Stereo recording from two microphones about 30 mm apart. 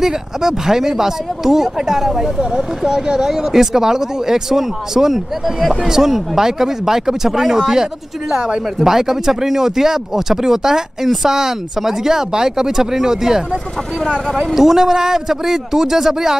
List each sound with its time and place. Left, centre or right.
0.0 s speech: centre
5.1 s speech: centre
5.9 s speech: centre
14.5 s speech: centre